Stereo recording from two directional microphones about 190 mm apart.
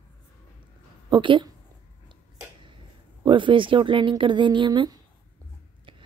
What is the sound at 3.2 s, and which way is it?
Speech, 25° right (ahead or behind).